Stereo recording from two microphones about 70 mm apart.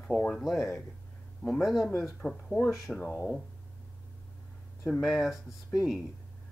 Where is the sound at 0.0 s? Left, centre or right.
Left.